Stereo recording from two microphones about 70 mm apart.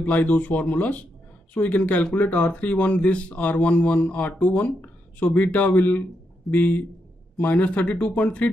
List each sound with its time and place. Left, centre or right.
0.0 s speech: left